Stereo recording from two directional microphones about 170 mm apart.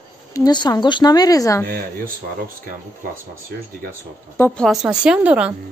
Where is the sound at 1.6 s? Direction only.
60° right (ahead or behind).